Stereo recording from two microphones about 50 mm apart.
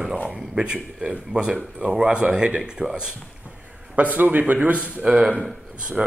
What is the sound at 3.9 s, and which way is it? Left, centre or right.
Speech, right.